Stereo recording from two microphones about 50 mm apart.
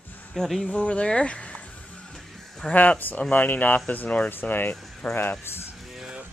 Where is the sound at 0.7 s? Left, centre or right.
Left.